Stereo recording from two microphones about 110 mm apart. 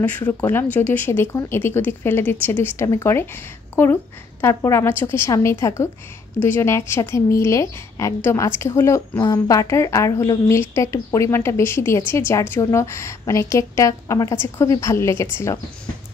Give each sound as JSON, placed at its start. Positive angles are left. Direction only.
{"t": 0.3, "sound": "a woman's voice", "side_deg": 20}